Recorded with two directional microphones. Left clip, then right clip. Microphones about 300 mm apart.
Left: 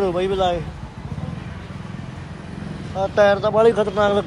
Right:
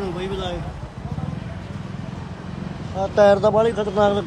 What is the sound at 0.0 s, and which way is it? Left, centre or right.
Speech, centre.